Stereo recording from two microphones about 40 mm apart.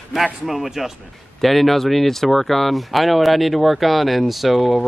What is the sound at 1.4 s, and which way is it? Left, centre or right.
Speech, centre.